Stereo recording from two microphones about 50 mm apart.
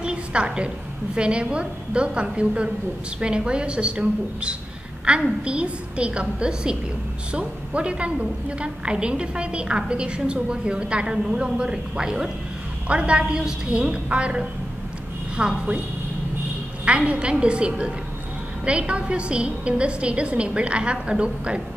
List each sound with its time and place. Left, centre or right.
0.0 s a sound: right
1.1 s a woman's voice: right
16.8 s a woman's voice: right